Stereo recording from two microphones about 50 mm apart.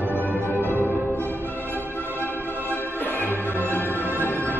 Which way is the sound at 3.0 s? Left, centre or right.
Left.